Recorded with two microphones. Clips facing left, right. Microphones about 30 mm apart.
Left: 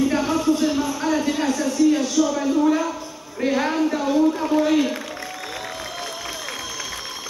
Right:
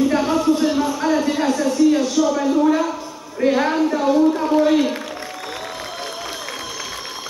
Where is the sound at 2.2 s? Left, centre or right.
Centre.